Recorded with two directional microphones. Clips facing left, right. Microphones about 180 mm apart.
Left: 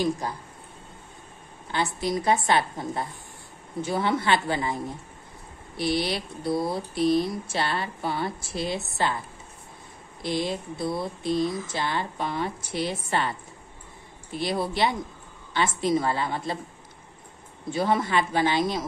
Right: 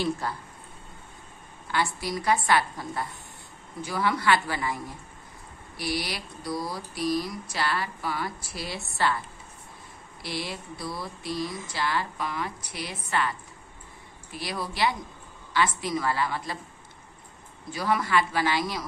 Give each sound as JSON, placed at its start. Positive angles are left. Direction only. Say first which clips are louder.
{"t": 0.0, "sound": "speech", "louder": "left 2 dB", "side_deg": 15}
{"t": 1.7, "sound": "speech", "louder": "left 2 dB", "side_deg": 20}
{"t": 10.2, "sound": "speech", "louder": "left 7 dB", "side_deg": 20}
{"t": 17.6, "sound": "speech", "louder": "left 3 dB", "side_deg": 25}